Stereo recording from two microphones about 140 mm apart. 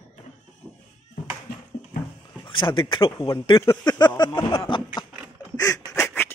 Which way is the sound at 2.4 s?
35° left (ahead or behind).